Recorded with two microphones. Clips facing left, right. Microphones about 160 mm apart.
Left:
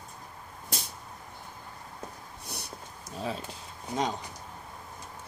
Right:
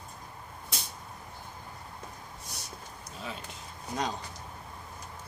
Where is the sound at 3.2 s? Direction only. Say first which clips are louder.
Left 7 dB; 35° left (ahead or behind).